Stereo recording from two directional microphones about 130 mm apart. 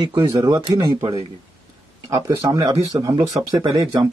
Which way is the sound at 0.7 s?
35° right (ahead or behind).